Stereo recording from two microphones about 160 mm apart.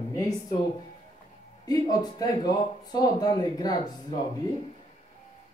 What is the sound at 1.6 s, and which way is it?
Speech, 25° left (ahead or behind).